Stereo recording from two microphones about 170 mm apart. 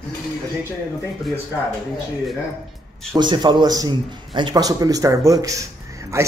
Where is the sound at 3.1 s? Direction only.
25° right (ahead or behind).